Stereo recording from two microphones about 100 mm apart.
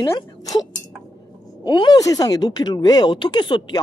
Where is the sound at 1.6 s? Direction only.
50° left (ahead or behind).